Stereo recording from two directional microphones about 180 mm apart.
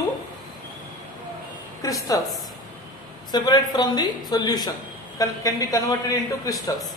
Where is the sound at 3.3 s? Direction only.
20° left (ahead or behind).